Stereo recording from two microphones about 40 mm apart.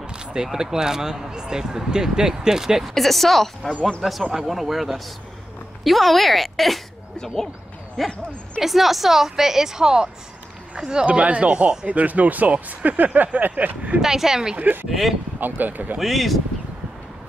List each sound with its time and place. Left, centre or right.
0.0 s a sound: right
0.5 s speech: centre
2.9 s a woman's voice: centre
8.0 s a woman's voice: centre
11.1 s speech: right
13.9 s speech: centre
14.6 s speech: right
14.9 s a woman's voice: centre
15.4 s speech: right
16.0 s a woman's voice: centre